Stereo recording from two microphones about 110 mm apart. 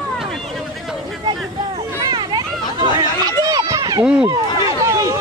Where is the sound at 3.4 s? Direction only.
35° right (ahead or behind).